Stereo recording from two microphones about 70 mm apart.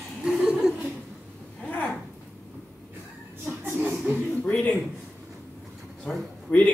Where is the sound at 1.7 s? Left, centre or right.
Centre.